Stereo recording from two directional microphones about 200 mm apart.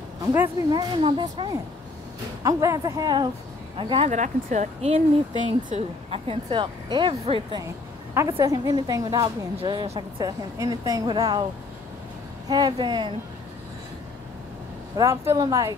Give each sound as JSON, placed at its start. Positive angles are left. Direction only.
{"t": 0.3, "sound": "speech", "side_deg": -15}
{"t": 8.1, "sound": "speech", "side_deg": -15}
{"t": 12.4, "sound": "speech", "side_deg": -20}
{"t": 15.0, "sound": "speech", "side_deg": -15}